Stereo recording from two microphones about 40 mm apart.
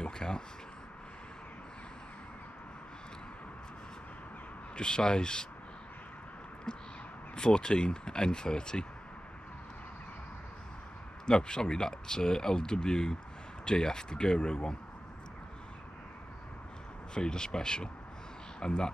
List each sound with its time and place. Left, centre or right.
0.0 s a sound: left
4.7 s speech: left
7.3 s speech: left
11.2 s speech: left
17.1 s speech: centre